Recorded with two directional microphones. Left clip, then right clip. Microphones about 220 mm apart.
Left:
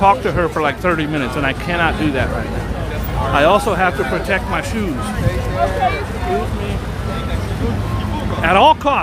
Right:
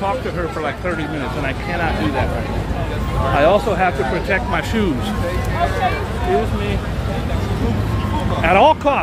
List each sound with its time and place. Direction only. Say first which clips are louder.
0.0 s speech: left 8 dB; 30° left (ahead or behind)
3.3 s speech: left 2 dB; 10° left (ahead or behind)
8.4 s speech: left 1 dB; 10° left (ahead or behind)